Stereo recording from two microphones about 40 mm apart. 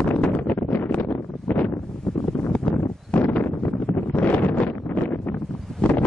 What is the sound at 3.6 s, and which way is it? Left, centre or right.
Wind noise, left.